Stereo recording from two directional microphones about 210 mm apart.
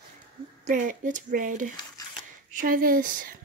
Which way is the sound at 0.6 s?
35° right (ahead or behind).